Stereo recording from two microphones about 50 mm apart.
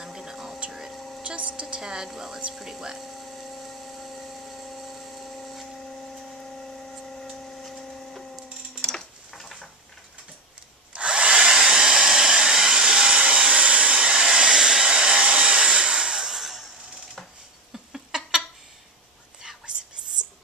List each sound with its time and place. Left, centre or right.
0.0 s whispering: centre
0.7 s a sound: centre
1.2 s a sound: right
1.8 s speech: centre
3.1 s dental drill: centre
6.3 s printer: centre
8.8 s tick-tock: centre
11.0 s hair dryer: right; by 16.6 s centre
17.7 s cat: centre